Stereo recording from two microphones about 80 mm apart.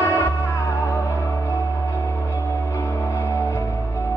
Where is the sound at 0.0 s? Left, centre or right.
Left.